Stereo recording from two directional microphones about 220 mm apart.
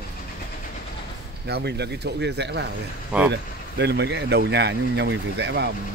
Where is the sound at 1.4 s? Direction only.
50° right (ahead or behind).